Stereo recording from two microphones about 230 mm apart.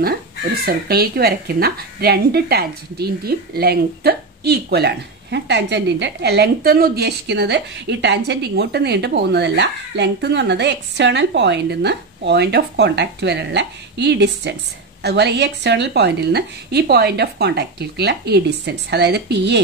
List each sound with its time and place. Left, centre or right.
0.7 s a woman's voice: right